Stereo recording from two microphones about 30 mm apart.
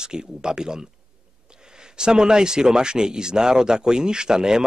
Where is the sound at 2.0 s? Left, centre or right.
Right.